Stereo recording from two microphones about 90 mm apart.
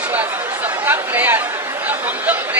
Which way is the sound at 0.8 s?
20° right (ahead or behind).